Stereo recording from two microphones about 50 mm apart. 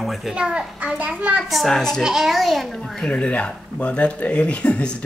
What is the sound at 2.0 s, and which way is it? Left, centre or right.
A child's voice, centre.